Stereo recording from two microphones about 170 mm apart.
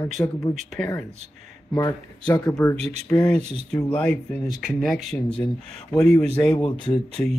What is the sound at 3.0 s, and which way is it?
Speech, 10° left (ahead or behind).